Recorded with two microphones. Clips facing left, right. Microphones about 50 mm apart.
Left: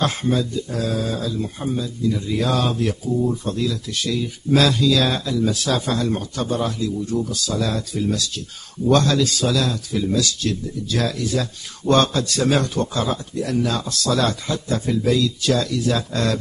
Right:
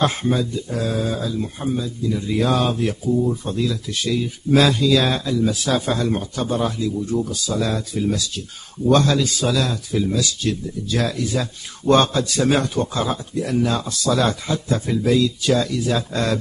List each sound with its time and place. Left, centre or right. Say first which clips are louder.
0.0 s a man's voice: right 1 dB; centre